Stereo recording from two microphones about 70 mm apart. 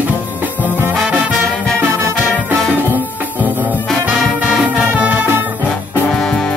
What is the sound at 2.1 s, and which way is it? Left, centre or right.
Music, centre.